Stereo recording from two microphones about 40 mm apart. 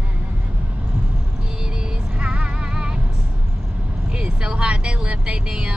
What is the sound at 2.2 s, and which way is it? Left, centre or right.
Music, right.